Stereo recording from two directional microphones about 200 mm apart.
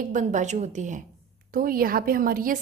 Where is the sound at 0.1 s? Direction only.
40° right (ahead or behind).